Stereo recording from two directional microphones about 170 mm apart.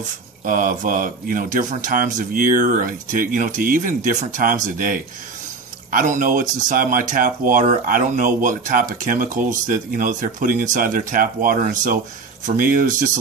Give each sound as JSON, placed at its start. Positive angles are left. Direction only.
{"t": 0.5, "sound": "speech", "side_deg": -55}